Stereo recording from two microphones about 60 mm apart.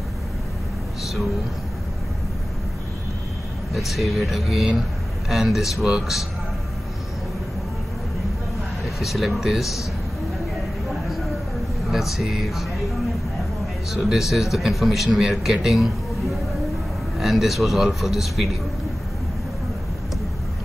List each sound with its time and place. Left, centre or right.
3.7 s a man's voice: centre
8.8 s a man's voice: centre
11.9 s a man's voice: centre
13.9 s a man's voice: centre
17.2 s a man's voice: centre